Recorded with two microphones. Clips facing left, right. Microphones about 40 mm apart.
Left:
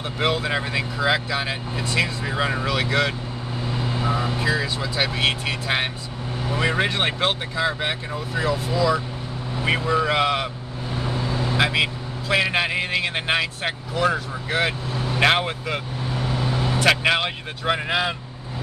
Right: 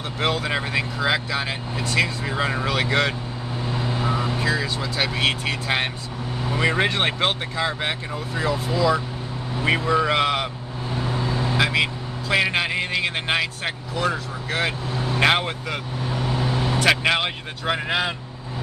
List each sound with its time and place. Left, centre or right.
0.2 s speech: centre
3.7 s vehicle: centre
4.0 s vehicle: centre
4.4 s speech: centre
11.0 s vehicle: right
11.5 s speech: centre
15.1 s speech: centre
16.8 s speech: centre